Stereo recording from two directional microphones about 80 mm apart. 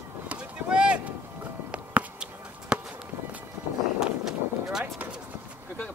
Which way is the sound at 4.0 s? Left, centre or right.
Centre.